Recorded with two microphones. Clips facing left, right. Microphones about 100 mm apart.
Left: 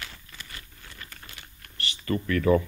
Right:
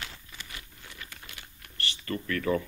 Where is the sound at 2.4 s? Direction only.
20° left (ahead or behind).